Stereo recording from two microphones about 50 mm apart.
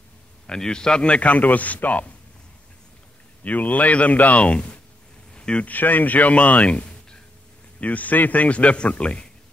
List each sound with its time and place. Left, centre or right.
0.5 s a man's voice: centre
3.4 s a man's voice: left
5.3 s a sound: centre
5.7 s a man's voice: left